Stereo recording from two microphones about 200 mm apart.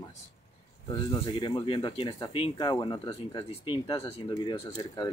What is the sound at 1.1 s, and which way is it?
Speech, 25° left (ahead or behind).